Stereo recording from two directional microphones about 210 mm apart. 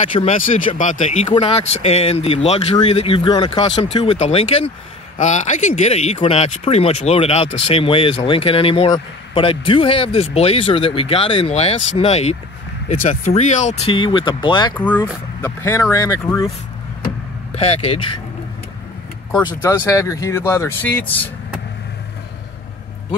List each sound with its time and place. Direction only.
0.1 s speech: 30° left (ahead or behind)
14.8 s speech: 10° left (ahead or behind)
17.6 s speech: 30° left (ahead or behind)
19.4 s speech: 10° left (ahead or behind)